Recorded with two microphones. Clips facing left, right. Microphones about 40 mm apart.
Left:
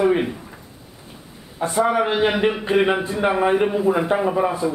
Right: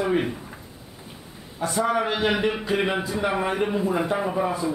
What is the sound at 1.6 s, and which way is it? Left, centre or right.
A man's voice, centre.